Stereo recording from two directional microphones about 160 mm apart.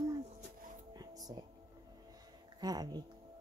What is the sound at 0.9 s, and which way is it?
Music, 25° right (ahead or behind).